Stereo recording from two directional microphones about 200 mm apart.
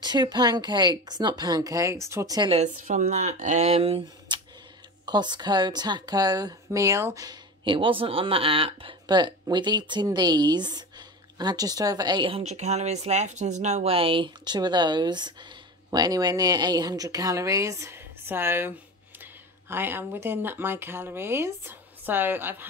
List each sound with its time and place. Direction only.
0.0 s speech: 20° right (ahead or behind)